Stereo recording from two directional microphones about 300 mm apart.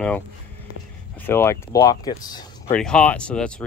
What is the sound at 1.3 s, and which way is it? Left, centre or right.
Speech, centre.